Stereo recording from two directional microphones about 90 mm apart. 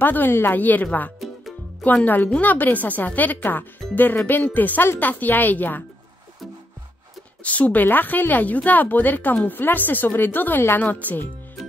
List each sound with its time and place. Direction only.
0.0 s speech: 20° left (ahead or behind)
2.0 s speech: 20° left (ahead or behind)
7.4 s speech: 15° left (ahead or behind)